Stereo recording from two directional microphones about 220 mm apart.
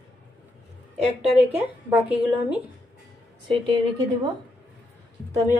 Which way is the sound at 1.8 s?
5° right (ahead or behind).